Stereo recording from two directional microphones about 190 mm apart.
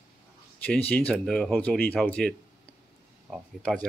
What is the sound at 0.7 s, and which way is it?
Speech, 5° left (ahead or behind).